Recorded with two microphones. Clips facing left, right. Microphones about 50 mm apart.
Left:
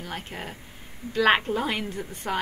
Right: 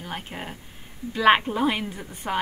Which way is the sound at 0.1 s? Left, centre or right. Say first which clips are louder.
Right 3 dB; centre.